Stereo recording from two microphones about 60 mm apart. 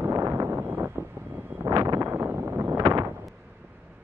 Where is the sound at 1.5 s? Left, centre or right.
Right.